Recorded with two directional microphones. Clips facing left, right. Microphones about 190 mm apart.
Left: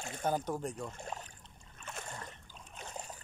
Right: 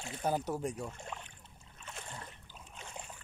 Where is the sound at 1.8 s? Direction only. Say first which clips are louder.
Left 2 dB; 45° left (ahead or behind).